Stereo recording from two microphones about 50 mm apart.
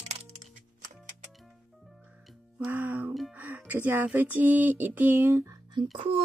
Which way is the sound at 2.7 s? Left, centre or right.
Right.